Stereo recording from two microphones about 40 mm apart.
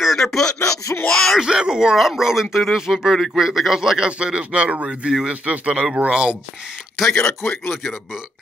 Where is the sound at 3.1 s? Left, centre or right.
Centre.